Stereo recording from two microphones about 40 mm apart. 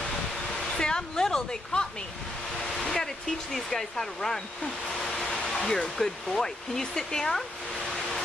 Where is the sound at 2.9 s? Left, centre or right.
Centre.